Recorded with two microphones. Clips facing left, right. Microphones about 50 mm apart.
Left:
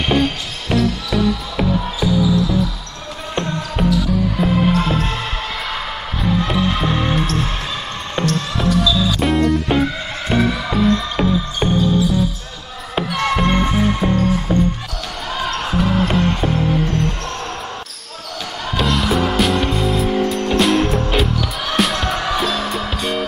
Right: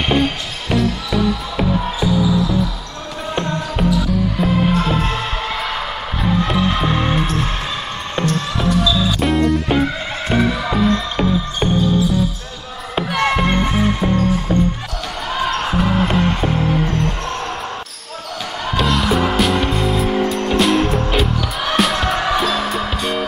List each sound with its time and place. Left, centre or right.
0.0 s music: centre
3.3 s basketball bounce: centre
6.2 s music: centre
8.3 s music: centre
13.0 s music: centre
13.4 s music: centre
14.5 s music: centre
15.3 s music: centre
18.8 s music: centre
21.3 s music: centre